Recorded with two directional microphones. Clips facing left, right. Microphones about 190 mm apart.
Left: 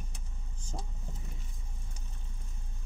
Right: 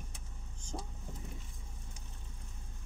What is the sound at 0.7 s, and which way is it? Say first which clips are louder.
Speech: right 1 dB; 5° left (ahead or behind).